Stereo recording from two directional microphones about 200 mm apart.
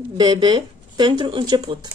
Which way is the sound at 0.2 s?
25° right (ahead or behind).